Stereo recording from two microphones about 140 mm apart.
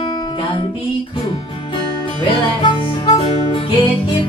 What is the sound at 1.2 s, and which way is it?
Music, 40° left (ahead or behind).